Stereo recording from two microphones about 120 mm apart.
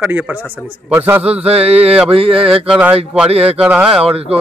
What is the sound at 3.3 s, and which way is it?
Speech, 60° right (ahead or behind).